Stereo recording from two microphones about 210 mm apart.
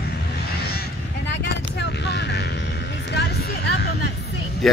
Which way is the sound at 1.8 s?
55° left (ahead or behind).